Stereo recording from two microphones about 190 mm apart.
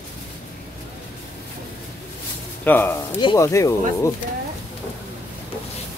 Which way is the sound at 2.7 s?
10° left (ahead or behind).